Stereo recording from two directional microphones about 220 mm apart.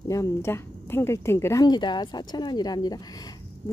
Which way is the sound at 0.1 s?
10° left (ahead or behind).